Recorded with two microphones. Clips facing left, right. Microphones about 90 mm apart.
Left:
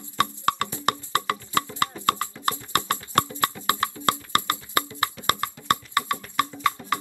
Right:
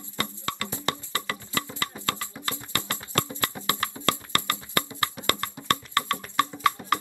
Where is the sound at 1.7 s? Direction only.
20° right (ahead or behind).